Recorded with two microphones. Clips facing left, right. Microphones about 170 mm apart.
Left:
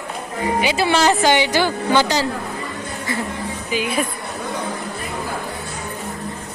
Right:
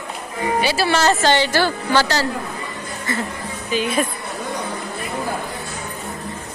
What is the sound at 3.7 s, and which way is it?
Speech, 10° left (ahead or behind).